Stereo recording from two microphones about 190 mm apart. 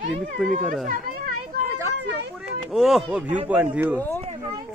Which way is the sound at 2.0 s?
60° right (ahead or behind).